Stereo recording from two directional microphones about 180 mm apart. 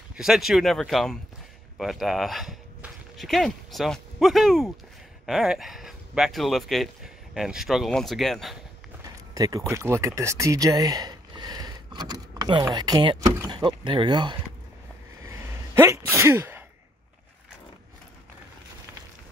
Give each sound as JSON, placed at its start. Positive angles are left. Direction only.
{"t": 0.1, "sound": "speech", "side_deg": 0}
{"t": 9.0, "sound": "a sound", "side_deg": -20}
{"t": 9.7, "sound": "speech", "side_deg": -15}
{"t": 15.2, "sound": "sneeze", "side_deg": -15}